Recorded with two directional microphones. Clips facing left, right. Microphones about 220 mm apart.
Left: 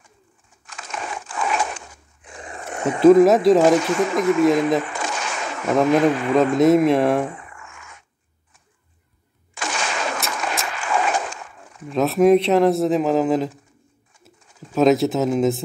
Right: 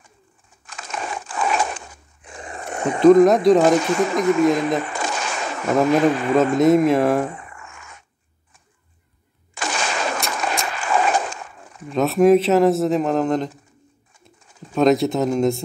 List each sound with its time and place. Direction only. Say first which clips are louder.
0.7 s crumpling: right 2 dB; 35° right (ahead or behind)
3.0 s speech: even; 5° left (ahead or behind)
3.8 s speech: right 1 dB; 35° right (ahead or behind)
4.5 s speech: left 2 dB; centre (ahead or behind)
4.8 s a sound: right 1 dB; 35° right (ahead or behind)
5.7 s speech: even; centre (ahead or behind)
7.3 s a sound: right 1 dB; 35° right (ahead or behind)
9.5 s a sound: right 1 dB; 35° right (ahead or behind)
10.3 s gunshot: right 2 dB; 35° right (ahead or behind)
11.9 s speech: even; centre (ahead or behind)